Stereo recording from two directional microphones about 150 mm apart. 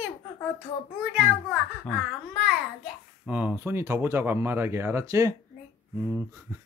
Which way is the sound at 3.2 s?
10° right (ahead or behind).